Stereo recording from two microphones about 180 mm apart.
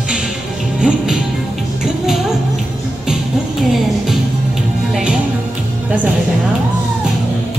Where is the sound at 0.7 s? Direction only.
5° right (ahead or behind).